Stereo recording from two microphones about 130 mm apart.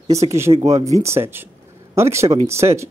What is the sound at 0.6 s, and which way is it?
Speech, 25° right (ahead or behind).